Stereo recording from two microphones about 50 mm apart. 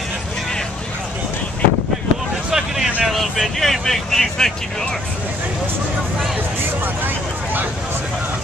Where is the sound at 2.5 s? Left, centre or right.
Centre.